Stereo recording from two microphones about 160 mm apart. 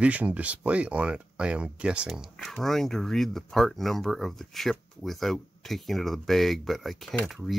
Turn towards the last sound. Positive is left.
turn(degrees=0)  # may be behind; listen again after turning